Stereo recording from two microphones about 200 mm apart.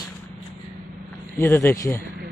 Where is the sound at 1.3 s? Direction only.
10° left (ahead or behind).